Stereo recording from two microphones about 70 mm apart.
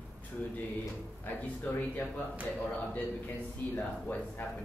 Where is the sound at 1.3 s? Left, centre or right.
Left.